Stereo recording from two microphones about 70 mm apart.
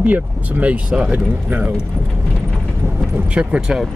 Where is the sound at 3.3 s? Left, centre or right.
Centre.